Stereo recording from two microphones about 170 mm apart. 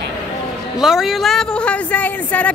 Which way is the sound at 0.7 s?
Centre (ahead or behind).